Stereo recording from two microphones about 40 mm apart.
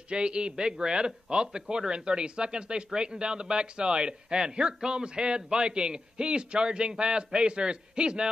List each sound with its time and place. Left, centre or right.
0.1 s speech: right